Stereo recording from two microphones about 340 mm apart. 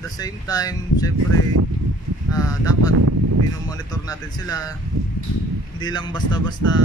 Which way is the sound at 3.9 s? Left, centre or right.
Centre.